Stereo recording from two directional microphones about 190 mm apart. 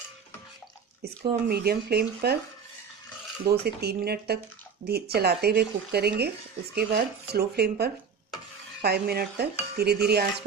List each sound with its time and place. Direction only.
1.5 s speech: 55° right (ahead or behind)
3.4 s speech: 55° right (ahead or behind)